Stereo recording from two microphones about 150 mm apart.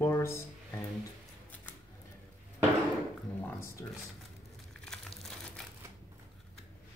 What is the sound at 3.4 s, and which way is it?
Speech, 20° left (ahead or behind).